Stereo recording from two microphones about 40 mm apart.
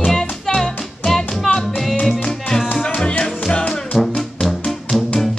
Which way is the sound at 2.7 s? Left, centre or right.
Left.